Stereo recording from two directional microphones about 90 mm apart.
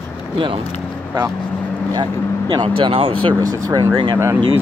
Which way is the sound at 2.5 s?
80° right.